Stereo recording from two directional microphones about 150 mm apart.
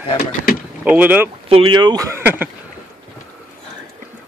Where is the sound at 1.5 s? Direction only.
35° right (ahead or behind).